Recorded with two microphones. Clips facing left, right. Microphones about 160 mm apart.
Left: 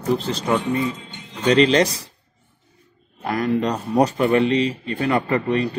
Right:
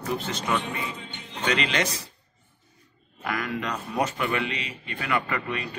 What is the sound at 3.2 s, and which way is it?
Speech, 35° left (ahead or behind).